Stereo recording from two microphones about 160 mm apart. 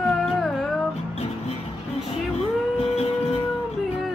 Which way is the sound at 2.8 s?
40° left (ahead or behind).